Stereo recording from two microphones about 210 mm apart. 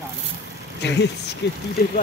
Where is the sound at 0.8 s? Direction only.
55° left (ahead or behind).